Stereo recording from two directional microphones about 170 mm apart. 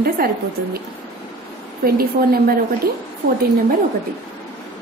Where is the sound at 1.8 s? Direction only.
60° right (ahead or behind).